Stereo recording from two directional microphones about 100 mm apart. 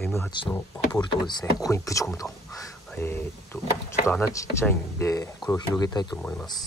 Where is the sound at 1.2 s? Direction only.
35° left (ahead or behind).